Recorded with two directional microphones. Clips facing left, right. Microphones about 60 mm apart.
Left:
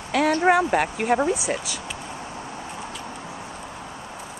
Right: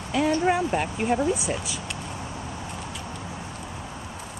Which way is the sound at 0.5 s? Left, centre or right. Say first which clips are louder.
Left 5 dB; left.